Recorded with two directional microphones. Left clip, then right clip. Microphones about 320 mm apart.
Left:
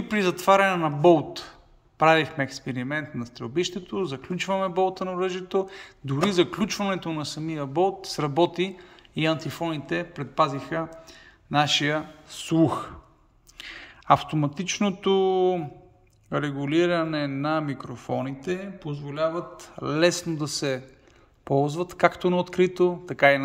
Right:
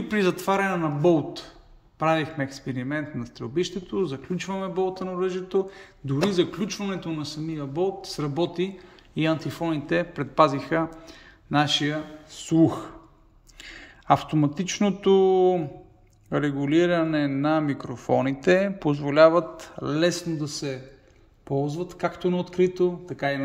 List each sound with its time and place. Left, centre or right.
0.1 s a man's voice: centre